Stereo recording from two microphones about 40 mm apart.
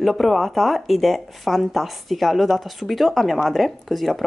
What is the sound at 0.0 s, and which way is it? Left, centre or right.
Speech, centre.